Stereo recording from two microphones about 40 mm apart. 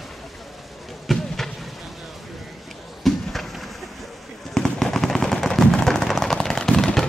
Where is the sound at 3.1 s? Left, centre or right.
Centre.